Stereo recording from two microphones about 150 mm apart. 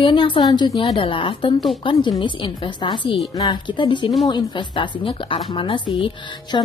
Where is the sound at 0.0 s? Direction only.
35° left (ahead or behind).